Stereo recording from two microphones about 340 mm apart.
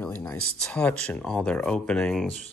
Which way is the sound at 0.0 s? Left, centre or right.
Centre.